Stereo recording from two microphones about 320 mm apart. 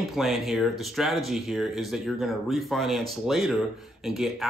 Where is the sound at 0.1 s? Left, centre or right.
Centre.